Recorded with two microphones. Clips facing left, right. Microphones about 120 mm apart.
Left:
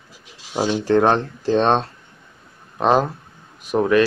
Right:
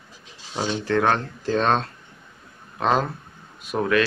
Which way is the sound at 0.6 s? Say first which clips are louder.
Left 5 dB; 10° left (ahead or behind).